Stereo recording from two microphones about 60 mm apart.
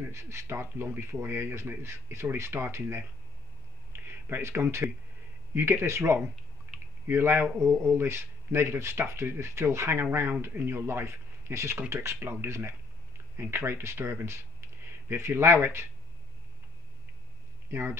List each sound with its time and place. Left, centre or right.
0.1 s speech: right
4.3 s speech: right
6.7 s a sound: right
7.1 s speech: right
17.6 s speech: right